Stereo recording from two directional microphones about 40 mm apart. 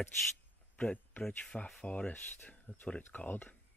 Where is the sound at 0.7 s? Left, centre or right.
Left.